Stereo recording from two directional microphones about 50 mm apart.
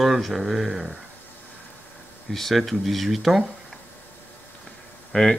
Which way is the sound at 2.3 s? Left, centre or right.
Centre.